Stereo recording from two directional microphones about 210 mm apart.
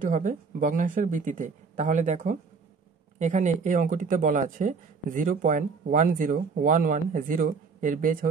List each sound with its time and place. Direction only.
0.0 s speech: 40° right (ahead or behind)